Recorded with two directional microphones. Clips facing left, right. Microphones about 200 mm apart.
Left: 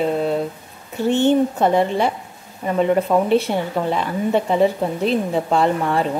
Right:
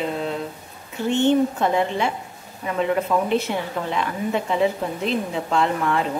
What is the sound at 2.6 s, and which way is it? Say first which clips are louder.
A woman's voice: left 5 dB; 35° left (ahead or behind).